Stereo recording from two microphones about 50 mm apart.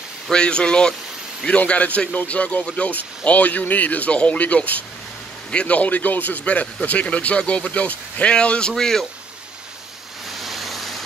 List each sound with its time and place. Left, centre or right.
0.3 s speech: centre
1.7 s speech: left
2.9 s speech: left; by 9.0 s centre
10.4 s vehicle: centre